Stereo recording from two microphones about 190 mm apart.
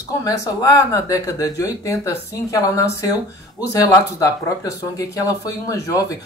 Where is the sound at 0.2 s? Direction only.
15° left (ahead or behind).